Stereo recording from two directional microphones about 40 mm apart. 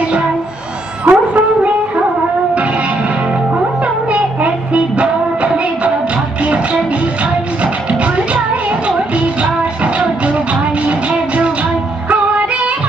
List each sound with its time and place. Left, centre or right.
1.0 s a sound: right
3.8 s music: right
10.9 s music: right